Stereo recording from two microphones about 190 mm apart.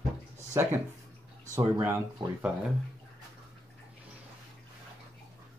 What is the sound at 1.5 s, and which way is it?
Speech, 15° right (ahead or behind).